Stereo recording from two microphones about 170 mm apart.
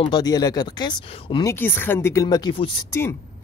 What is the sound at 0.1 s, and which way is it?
Speech, 25° left (ahead or behind).